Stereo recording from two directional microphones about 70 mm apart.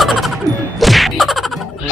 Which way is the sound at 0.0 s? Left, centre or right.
Centre.